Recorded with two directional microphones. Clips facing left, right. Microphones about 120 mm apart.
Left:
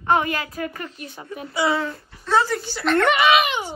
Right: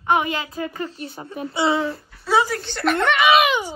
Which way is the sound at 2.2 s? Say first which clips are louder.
Right 1 dB; 10° right (ahead or behind).